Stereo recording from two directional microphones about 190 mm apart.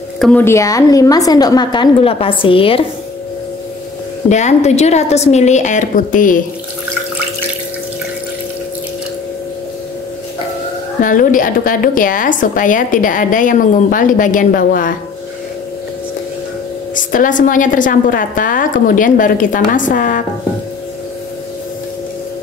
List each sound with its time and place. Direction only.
0.2 s a woman's voice: 10° left (ahead or behind); by 2.8 s 30° left (ahead or behind)
4.3 s a woman's voice: 40° left (ahead or behind)
11.0 s a woman's voice: 45° left (ahead or behind)
16.9 s a woman's voice: 45° left (ahead or behind)